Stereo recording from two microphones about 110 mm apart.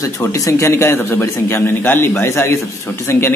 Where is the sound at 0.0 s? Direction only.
30° left (ahead or behind).